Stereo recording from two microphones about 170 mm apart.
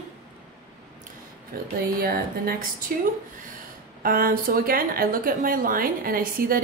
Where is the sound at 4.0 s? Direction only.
55° right (ahead or behind).